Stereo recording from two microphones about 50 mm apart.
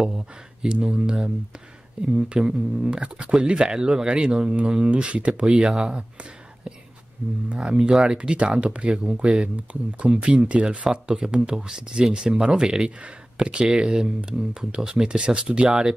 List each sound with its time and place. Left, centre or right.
0.0 s speech: centre
7.5 s speech: centre
7.9 s speech: centre
8.2 s speech: right